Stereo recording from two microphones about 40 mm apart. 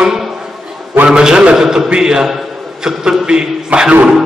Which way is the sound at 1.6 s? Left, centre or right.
Centre.